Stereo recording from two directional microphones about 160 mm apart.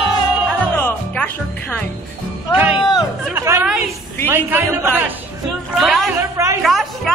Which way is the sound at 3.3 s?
20° right (ahead or behind).